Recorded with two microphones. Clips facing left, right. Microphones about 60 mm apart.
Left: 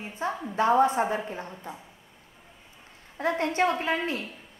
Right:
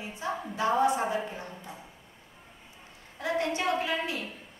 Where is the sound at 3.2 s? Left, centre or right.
Left.